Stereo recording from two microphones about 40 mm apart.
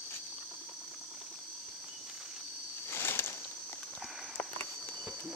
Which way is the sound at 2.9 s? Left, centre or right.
Left.